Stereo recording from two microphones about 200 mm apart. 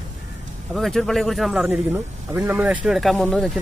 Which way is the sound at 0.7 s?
Centre (ahead or behind).